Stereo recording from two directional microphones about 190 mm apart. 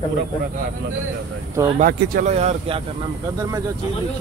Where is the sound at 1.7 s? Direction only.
45° right (ahead or behind).